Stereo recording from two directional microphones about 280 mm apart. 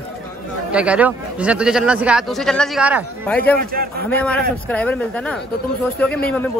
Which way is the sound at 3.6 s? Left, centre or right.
Right.